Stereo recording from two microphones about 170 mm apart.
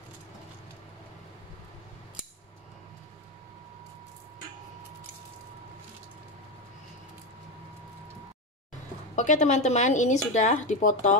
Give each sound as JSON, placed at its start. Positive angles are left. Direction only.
{"t": 9.1, "sound": "speech", "side_deg": 45}